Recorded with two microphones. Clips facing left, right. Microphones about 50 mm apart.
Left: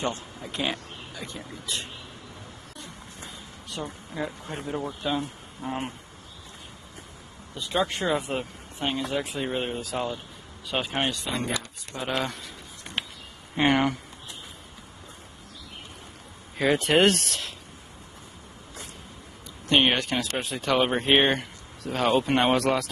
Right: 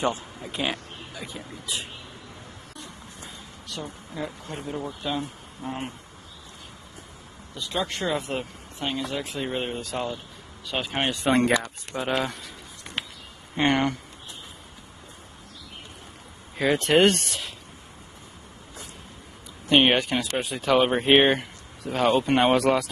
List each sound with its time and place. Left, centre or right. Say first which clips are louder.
0.0 s speech: right 3 dB; centre
3.6 s a woman's voice: left 1 dB; centre
5.0 s speech: left 1 dB; centre
7.5 s speech: left 2 dB; left
8.0 s speech: left 1 dB; centre
11.2 s speech: right 9 dB; right
11.9 s speech: right 3 dB; right
13.6 s speech: even; centre
16.5 s speech: right 1 dB; centre
19.7 s speech: right 3 dB; centre